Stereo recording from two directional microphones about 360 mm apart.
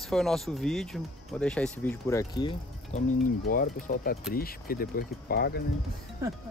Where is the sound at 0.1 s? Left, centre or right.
Centre.